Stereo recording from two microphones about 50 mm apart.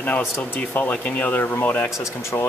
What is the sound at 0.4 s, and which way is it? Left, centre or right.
Speech, left.